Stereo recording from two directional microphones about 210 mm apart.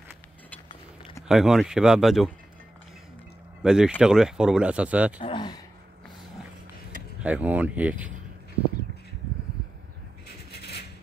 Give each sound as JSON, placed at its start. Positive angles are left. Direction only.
{"t": 1.2, "sound": "speech", "side_deg": 0}
{"t": 3.6, "sound": "speech", "side_deg": -5}
{"t": 5.2, "sound": "speech", "side_deg": 20}
{"t": 7.2, "sound": "speech", "side_deg": -5}
{"t": 10.5, "sound": "a sound", "side_deg": 50}